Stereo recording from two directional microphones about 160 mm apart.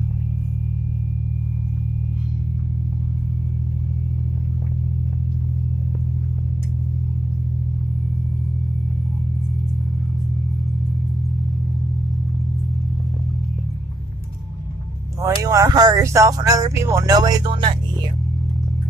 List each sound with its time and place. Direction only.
15.2 s speech: 20° right (ahead or behind)